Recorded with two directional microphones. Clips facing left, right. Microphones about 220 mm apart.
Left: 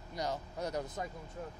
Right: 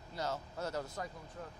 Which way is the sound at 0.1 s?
15° left (ahead or behind).